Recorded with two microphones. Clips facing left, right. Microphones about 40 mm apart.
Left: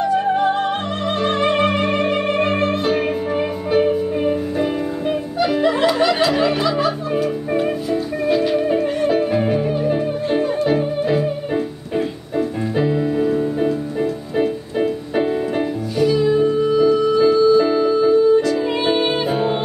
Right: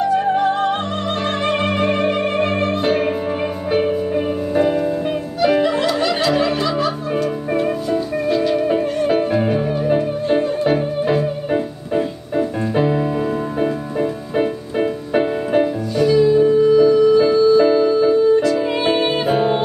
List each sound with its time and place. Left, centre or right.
0.0 s music: centre
2.8 s music: centre
9.0 s music: centre
11.5 s music: centre